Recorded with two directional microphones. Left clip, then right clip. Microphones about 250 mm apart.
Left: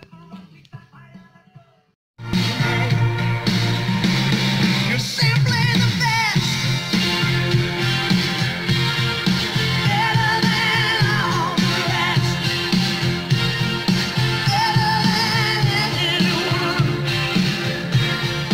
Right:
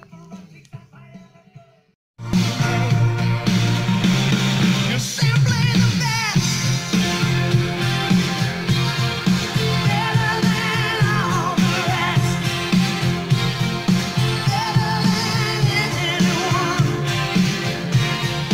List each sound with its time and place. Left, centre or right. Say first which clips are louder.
3.4 s music: right 1 dB; right